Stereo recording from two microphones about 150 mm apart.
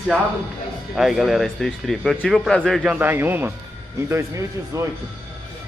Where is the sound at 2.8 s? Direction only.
10° right (ahead or behind).